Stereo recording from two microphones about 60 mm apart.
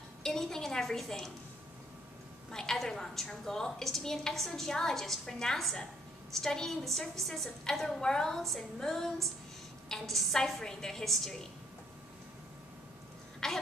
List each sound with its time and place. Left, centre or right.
0.2 s a woman's voice: centre
2.5 s a woman's voice: centre
13.4 s throat clearing: centre